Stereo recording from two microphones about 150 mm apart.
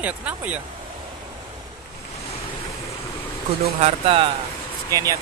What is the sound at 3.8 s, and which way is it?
Speech, 40° right (ahead or behind).